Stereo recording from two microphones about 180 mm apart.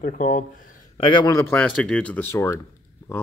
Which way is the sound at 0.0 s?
50° left (ahead or behind).